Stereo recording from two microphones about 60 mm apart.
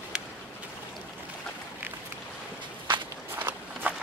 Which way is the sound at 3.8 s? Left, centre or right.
Right.